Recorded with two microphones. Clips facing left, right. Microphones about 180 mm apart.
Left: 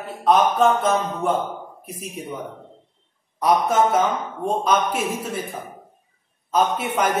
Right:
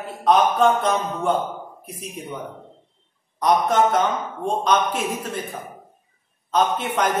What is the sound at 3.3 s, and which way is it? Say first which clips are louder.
A man's voice: even; 5° left (ahead or behind).